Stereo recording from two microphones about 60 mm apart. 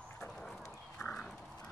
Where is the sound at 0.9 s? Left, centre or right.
Centre.